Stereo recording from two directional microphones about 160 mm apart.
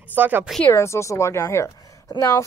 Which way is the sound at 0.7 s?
15° left (ahead or behind).